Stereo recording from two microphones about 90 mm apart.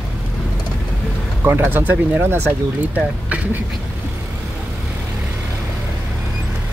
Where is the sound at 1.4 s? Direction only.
25° right (ahead or behind).